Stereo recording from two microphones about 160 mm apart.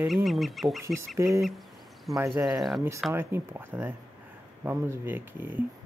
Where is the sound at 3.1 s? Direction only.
15° right (ahead or behind).